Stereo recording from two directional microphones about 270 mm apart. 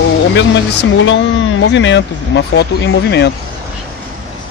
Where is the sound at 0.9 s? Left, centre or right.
Left.